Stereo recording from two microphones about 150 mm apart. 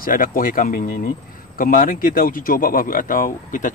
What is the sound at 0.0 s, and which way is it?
A man's voice, 70° left (ahead or behind).